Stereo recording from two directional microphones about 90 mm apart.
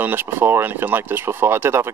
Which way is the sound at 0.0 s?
25° right (ahead or behind).